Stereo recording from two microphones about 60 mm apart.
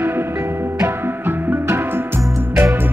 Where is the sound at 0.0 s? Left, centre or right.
Right.